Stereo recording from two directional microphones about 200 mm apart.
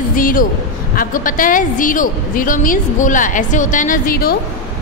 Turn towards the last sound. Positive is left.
turn(degrees=45)  # may be behind; listen again after turning